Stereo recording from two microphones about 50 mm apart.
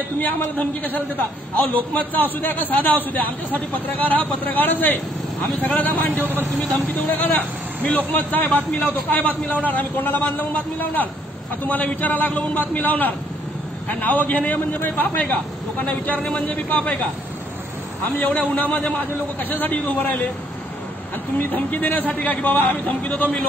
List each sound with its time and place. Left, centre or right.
0.2 s a man's voice: left
9.5 s a man's voice: left
18.1 s a man's voice: left
21.4 s a man's voice: left